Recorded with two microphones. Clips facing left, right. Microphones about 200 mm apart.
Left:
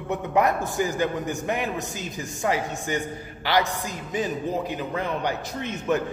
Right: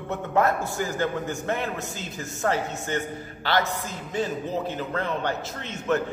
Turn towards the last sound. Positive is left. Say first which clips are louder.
# left 1 dB
turn(degrees=15)  # may be behind; listen again after turning